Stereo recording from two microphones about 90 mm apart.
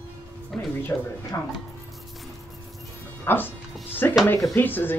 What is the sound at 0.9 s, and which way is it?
Speech, 30° left (ahead or behind).